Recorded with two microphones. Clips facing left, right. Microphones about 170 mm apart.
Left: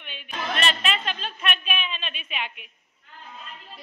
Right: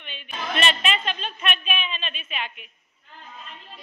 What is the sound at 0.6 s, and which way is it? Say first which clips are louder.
Speech: right 3 dB; centre (ahead or behind).